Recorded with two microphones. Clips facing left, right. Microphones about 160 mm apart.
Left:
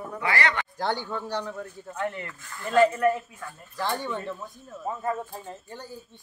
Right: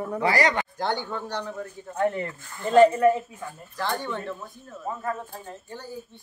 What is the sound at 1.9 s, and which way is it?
Speech, 35° right (ahead or behind).